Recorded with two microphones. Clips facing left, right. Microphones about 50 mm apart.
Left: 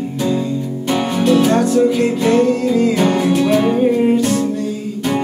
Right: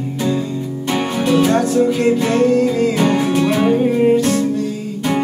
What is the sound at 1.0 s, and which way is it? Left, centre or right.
Music, centre.